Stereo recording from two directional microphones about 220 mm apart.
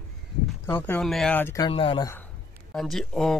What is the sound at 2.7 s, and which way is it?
Speech, centre (ahead or behind).